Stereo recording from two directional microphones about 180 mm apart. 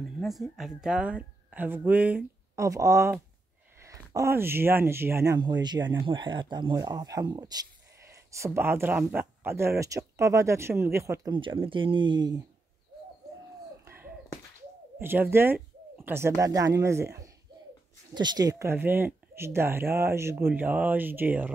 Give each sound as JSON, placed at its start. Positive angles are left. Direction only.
{"t": 0.2, "sound": "speech", "side_deg": 0}
{"t": 11.3, "sound": "speech", "side_deg": -30}
{"t": 13.8, "sound": "a sound", "side_deg": -10}
{"t": 15.0, "sound": "speech", "side_deg": -10}